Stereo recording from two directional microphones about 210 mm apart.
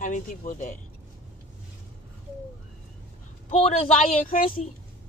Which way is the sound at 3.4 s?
30° left (ahead or behind).